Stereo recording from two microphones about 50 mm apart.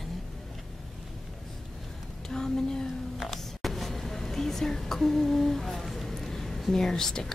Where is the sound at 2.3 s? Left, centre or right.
Centre.